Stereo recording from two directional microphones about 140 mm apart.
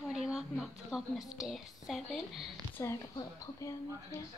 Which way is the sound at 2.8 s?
20° left (ahead or behind).